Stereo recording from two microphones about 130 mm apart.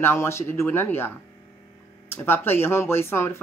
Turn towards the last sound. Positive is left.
turn(degrees=20)  # may be behind; listen again after turning